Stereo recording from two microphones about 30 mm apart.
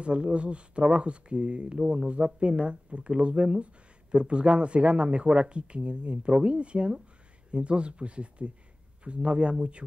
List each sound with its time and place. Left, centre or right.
0.0 s speech: right